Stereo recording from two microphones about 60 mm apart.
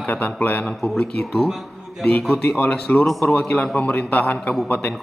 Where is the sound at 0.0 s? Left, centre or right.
Left.